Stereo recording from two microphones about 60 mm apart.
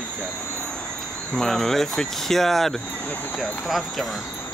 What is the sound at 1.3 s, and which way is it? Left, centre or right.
Speech, centre.